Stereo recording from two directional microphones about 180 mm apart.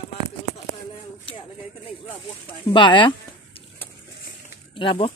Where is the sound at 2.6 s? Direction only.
25° left (ahead or behind).